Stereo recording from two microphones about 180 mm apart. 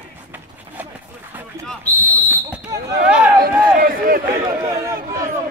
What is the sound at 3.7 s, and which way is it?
Speech, 50° right (ahead or behind).